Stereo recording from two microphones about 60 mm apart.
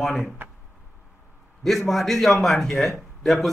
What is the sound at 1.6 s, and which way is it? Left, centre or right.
Speech, centre.